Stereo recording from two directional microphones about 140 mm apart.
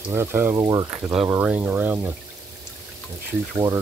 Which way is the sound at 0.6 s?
30° right (ahead or behind).